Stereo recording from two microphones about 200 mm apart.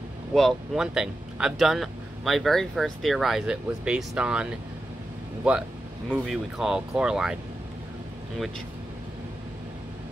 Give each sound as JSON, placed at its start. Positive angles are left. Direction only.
{"t": 0.3, "sound": "speech", "side_deg": 0}